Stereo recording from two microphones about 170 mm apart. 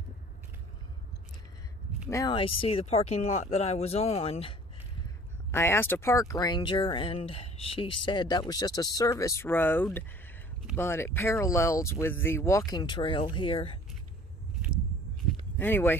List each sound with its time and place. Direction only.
2.0 s speech: 15° left (ahead or behind)
2.3 s speech: 30° left (ahead or behind)
5.5 s speech: 15° left (ahead or behind); by 13.7 s 30° left (ahead or behind)
15.5 s speech: 10° left (ahead or behind)